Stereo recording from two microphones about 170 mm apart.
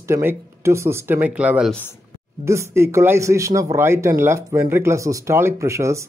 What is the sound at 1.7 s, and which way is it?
Speech, 10° left (ahead or behind).